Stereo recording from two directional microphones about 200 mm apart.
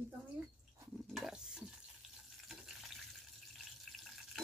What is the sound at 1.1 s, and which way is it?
Stir, centre (ahead or behind).